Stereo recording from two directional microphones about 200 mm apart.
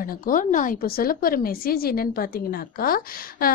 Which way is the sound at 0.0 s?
45° left (ahead or behind).